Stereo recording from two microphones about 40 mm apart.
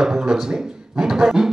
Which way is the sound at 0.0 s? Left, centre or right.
Centre.